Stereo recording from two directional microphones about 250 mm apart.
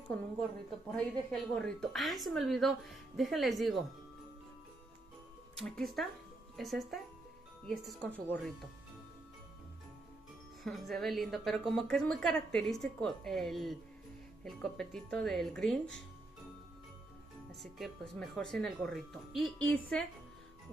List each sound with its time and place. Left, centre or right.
0.9 s a woman's voice: centre
5.6 s a woman's voice: centre
10.6 s a woman's voice: centre
17.5 s a woman's voice: centre